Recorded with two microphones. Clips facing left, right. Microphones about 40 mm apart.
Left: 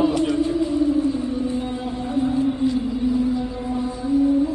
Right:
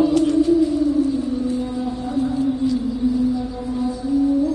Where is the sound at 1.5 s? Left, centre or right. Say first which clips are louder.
Right 2 dB; left.